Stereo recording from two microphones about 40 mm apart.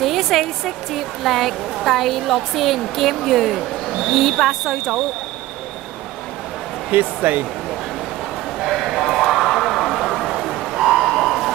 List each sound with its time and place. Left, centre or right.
0.0 s speech: centre
6.9 s speech: right
8.7 s a sound: centre